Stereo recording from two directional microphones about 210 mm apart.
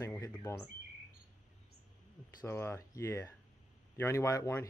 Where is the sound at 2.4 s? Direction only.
10° left (ahead or behind).